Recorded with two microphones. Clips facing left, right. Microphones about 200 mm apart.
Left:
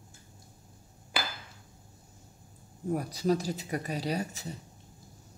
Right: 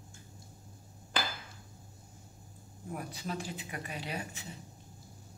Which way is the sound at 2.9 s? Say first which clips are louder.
Left 11 dB; 40° left (ahead or behind).